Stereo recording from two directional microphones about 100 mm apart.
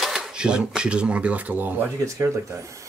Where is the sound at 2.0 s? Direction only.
30° right (ahead or behind).